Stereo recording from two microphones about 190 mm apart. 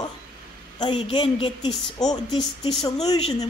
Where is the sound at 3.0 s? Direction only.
30° left (ahead or behind).